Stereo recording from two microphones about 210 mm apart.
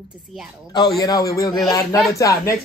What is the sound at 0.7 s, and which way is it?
A man's voice, 20° left (ahead or behind).